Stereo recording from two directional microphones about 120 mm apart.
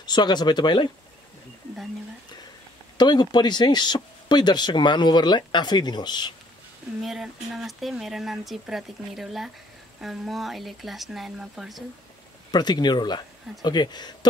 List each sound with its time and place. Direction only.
0.0 s speech: 35° left (ahead or behind)
3.0 s speech: 35° left (ahead or behind)
7.0 s speech: centre (ahead or behind)
12.4 s speech: 35° left (ahead or behind)